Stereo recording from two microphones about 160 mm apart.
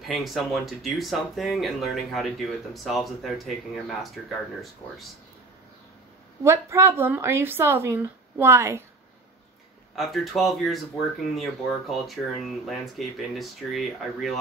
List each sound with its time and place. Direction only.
0.0 s speech: centre (ahead or behind)
6.4 s speech: 15° right (ahead or behind)
9.9 s speech: centre (ahead or behind)